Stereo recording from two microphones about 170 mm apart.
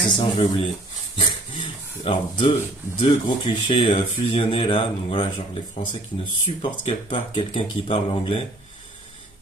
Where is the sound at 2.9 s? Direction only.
35° left (ahead or behind).